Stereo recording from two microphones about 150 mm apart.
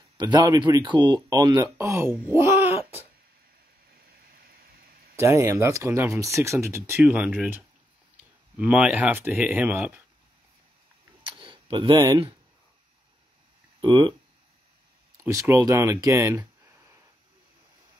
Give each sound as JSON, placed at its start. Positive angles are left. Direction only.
{"t": 0.2, "sound": "speech", "side_deg": -25}
{"t": 4.2, "sound": "a sound", "side_deg": -80}
{"t": 5.2, "sound": "speech", "side_deg": -20}
{"t": 11.2, "sound": "a sound", "side_deg": -35}
{"t": 13.7, "sound": "speech", "side_deg": -30}
{"t": 15.1, "sound": "speech", "side_deg": -20}